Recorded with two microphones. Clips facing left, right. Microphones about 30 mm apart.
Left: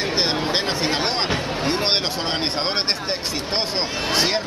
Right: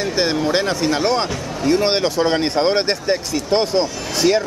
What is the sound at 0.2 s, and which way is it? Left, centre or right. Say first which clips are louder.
Speech: right 6 dB; left.